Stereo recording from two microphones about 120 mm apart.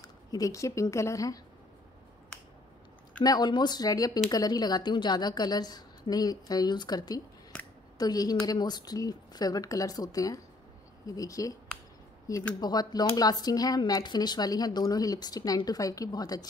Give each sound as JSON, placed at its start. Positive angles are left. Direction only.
{"t": 0.0, "sound": "speech", "side_deg": 30}
{"t": 3.2, "sound": "speech", "side_deg": 35}
{"t": 12.5, "sound": "speech", "side_deg": 35}